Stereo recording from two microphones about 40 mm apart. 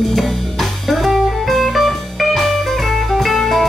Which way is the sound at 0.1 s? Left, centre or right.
Centre.